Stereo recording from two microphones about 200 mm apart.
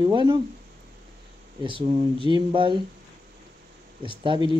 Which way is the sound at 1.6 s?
25° right (ahead or behind).